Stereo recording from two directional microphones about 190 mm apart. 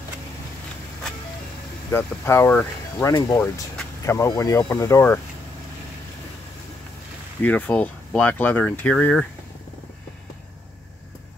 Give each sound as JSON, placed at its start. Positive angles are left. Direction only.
{"t": 1.9, "sound": "speech", "side_deg": 15}
{"t": 7.4, "sound": "speech", "side_deg": 10}